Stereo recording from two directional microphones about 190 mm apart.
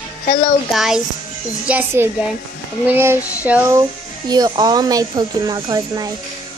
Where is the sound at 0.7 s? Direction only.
Centre (ahead or behind).